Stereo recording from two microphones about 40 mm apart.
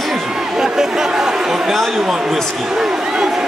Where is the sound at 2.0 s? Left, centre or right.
Centre.